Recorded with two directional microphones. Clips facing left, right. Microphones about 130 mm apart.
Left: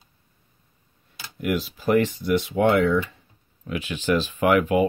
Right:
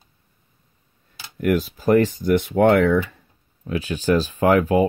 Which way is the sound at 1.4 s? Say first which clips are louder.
Right 5 dB; 45° right (ahead or behind).